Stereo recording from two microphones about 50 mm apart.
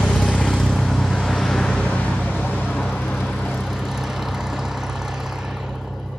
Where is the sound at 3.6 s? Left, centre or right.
Centre.